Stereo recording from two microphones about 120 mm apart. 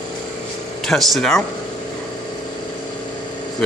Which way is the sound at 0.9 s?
Centre (ahead or behind).